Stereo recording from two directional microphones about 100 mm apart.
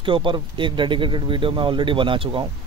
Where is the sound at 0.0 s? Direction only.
60° right (ahead or behind).